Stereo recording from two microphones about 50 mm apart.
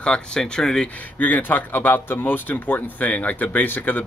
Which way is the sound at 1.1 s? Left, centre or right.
Left.